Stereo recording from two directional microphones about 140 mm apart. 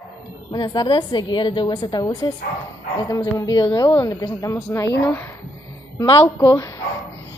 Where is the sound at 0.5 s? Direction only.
30° left (ahead or behind).